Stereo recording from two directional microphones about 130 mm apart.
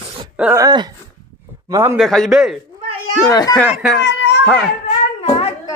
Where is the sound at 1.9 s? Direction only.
Centre (ahead or behind).